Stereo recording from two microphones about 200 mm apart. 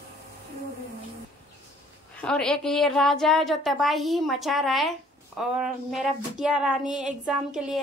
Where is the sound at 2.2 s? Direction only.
5° left (ahead or behind).